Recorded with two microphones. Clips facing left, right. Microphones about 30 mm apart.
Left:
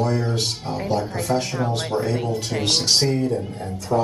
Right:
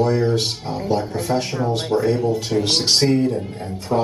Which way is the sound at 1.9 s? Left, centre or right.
Right.